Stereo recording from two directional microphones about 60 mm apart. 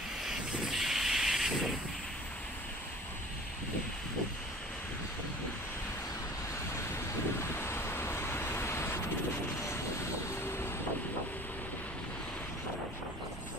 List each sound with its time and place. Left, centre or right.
0.2 s vehicle: centre
7.5 s vehicle: left